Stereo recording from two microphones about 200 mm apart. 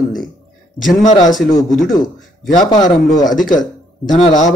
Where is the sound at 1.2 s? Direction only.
Centre (ahead or behind).